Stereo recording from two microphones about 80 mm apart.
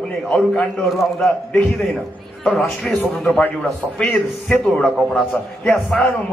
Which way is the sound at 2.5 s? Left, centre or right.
Centre.